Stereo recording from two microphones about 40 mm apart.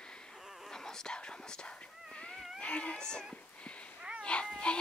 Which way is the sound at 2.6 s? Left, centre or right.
Left.